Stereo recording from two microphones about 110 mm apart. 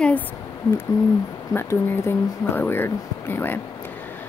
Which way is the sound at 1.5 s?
20° left (ahead or behind).